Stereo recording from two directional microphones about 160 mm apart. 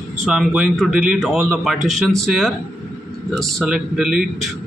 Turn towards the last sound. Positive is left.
turn(degrees=-5)  # may be behind; listen again after turning